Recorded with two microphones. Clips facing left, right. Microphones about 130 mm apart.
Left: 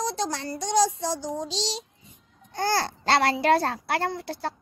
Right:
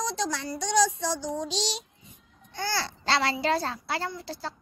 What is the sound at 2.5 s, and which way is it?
A child's voice, 45° left (ahead or behind).